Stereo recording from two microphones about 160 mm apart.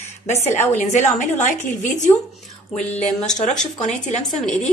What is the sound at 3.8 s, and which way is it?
Speech, 50° left (ahead or behind).